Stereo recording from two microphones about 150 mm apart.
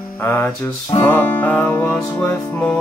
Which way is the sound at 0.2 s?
10° left (ahead or behind).